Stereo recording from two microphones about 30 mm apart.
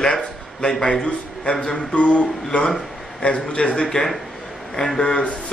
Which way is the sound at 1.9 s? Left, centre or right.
Left.